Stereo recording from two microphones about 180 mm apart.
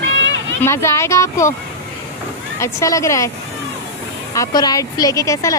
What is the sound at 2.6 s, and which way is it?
Speech, 15° left (ahead or behind).